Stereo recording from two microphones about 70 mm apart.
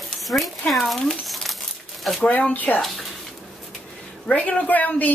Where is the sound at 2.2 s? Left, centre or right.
Left.